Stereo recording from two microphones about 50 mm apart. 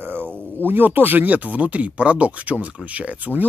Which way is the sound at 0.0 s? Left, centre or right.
Right.